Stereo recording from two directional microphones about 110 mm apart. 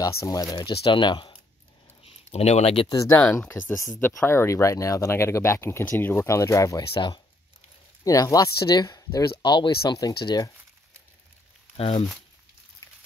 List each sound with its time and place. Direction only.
0.0 s speech: 30° left (ahead or behind)
2.3 s speech: 70° left (ahead or behind)
3.1 s speech: 15° left (ahead or behind)
3.7 s speech: 30° left (ahead or behind)
6.9 s speech: 45° left (ahead or behind)
8.0 s speech: 30° left (ahead or behind)
11.7 s speech: 70° left (ahead or behind)